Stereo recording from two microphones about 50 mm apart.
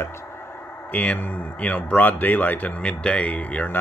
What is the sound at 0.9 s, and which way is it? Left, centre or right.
Speech, left.